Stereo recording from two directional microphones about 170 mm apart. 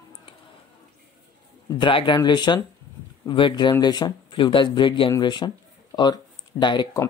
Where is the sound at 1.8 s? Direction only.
30° left (ahead or behind).